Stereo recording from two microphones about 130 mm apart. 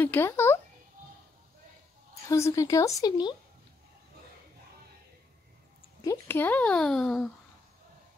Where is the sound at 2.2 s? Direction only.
25° left (ahead or behind).